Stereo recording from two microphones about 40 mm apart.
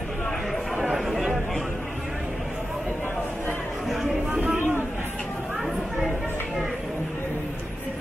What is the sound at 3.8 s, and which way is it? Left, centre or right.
Music, centre.